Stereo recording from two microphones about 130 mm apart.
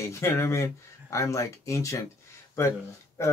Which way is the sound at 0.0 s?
25° left (ahead or behind).